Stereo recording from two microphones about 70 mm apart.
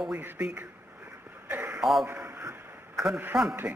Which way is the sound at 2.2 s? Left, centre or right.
Right.